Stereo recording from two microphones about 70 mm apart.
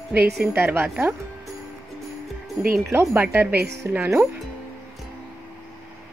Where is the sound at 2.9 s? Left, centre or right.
Right.